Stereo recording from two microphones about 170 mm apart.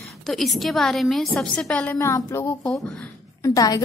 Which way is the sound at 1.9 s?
15° left (ahead or behind).